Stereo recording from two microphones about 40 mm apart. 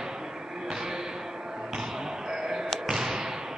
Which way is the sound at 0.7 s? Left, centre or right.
Centre.